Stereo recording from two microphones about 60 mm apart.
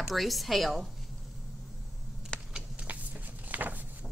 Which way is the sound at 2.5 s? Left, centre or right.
Centre.